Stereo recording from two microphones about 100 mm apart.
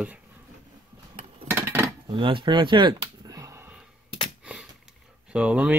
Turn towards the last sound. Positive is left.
turn(degrees=-10)  # may be behind; listen again after turning